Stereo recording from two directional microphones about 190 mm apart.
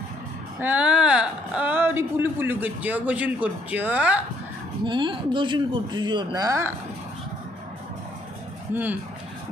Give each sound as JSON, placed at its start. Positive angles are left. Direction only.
{"t": 0.6, "sound": "a woman's voice", "side_deg": -10}
{"t": 4.8, "sound": "speech", "side_deg": -25}